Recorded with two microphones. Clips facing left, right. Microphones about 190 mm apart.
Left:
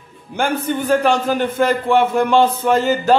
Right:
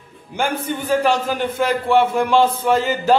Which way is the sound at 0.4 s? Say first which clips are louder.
Left 3 dB; 50° left (ahead or behind).